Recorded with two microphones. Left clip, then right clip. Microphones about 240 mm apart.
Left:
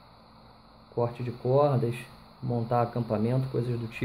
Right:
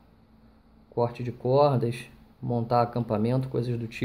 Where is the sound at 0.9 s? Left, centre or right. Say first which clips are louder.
Right 2 dB; centre.